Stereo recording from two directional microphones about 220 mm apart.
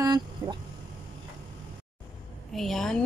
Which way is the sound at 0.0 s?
20° right (ahead or behind).